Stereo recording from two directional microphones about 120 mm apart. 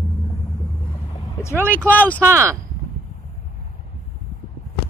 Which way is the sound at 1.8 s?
15° left (ahead or behind).